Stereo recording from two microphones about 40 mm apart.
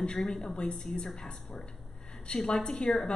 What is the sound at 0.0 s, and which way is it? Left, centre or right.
A woman's voice, centre.